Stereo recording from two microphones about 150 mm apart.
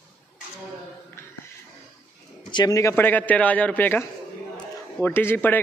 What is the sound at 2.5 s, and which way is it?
A man's voice, 25° left (ahead or behind).